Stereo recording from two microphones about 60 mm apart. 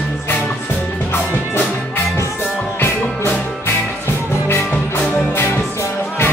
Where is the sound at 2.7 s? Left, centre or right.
Left.